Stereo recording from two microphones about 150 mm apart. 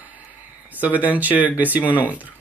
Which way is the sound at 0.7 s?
10° right (ahead or behind).